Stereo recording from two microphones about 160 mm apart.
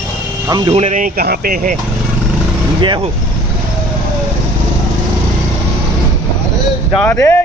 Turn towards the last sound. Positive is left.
turn(degrees=15)  # may be behind; listen again after turning